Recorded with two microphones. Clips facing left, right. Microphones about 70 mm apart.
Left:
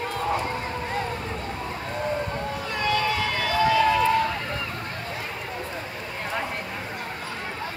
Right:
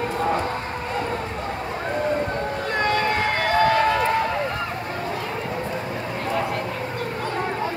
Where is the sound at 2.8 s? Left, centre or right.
Right.